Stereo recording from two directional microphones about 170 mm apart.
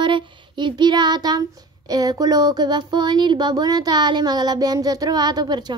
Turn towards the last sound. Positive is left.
turn(degrees=-25)  # may be behind; listen again after turning